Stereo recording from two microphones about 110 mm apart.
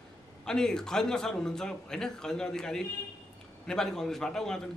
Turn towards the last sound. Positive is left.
turn(degrees=5)  # may be behind; listen again after turning